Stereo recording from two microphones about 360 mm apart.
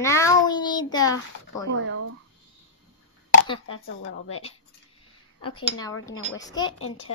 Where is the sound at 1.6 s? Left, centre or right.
Right.